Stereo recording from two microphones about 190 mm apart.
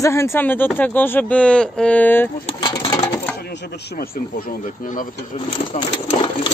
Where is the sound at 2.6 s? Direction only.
20° left (ahead or behind).